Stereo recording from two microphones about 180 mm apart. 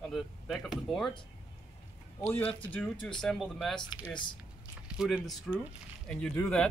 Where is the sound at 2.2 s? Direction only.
10° left (ahead or behind).